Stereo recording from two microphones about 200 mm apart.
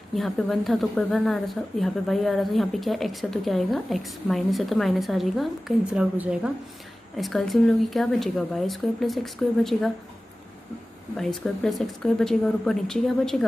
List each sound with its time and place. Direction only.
0.1 s speech: centre (ahead or behind)
11.1 s speech: centre (ahead or behind)